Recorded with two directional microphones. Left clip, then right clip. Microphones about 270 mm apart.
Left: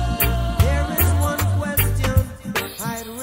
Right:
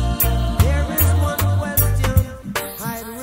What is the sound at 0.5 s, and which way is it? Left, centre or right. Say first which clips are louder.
Music: even; centre.